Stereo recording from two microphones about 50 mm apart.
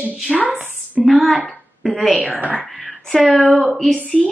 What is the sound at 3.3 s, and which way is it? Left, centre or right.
Speech, centre.